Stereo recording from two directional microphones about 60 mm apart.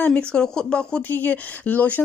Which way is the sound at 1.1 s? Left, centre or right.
Left.